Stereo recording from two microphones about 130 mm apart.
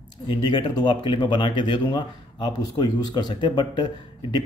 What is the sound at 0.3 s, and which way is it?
Speech, 35° left (ahead or behind).